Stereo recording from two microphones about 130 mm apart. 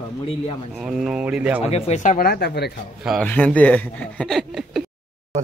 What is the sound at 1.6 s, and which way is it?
Speech, 55° left (ahead or behind).